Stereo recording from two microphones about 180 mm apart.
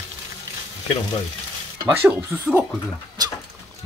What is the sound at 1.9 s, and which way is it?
Speech, 5° right (ahead or behind).